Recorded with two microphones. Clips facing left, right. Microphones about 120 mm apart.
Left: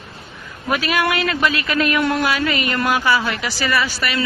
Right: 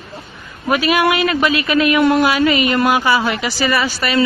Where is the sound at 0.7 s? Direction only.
10° right (ahead or behind).